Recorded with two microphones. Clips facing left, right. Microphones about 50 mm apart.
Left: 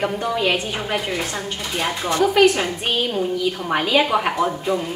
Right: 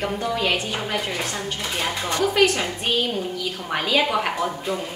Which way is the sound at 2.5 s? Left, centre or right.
Centre.